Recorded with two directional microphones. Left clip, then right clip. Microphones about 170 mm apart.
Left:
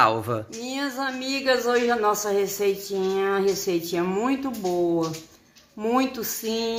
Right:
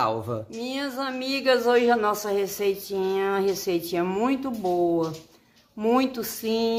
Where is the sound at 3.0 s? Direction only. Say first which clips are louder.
Left 1 dB; 40° right (ahead or behind).